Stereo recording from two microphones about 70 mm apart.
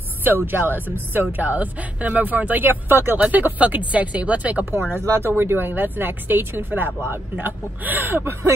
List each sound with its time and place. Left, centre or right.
0.2 s speech: right
5.2 s speech: right